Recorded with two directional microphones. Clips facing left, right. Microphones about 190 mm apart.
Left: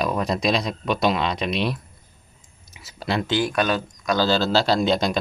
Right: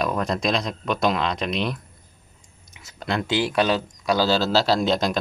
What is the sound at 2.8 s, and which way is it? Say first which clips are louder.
Speech: left 1 dB; 5° left (ahead or behind).